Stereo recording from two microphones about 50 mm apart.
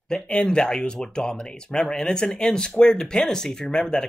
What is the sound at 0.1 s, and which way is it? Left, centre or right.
Speech, left.